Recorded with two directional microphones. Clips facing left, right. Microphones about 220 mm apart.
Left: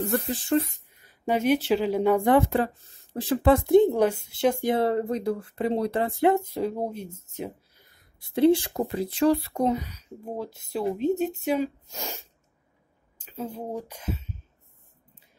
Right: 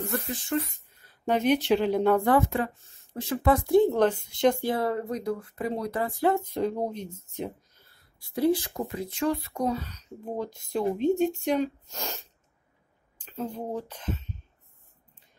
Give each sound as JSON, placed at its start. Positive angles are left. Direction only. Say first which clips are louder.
{"t": 0.3, "sound": "speech", "louder": "left 5 dB", "side_deg": 30}
{"t": 0.9, "sound": "speech", "louder": "even", "side_deg": 10}
{"t": 2.3, "sound": "speech", "louder": "left 3 dB", "side_deg": 35}
{"t": 4.6, "sound": "speech", "louder": "left 4 dB", "side_deg": 25}
{"t": 6.3, "sound": "speech", "louder": "left 1 dB", "side_deg": 5}
{"t": 9.7, "sound": "speech", "louder": "left 3 dB", "side_deg": 15}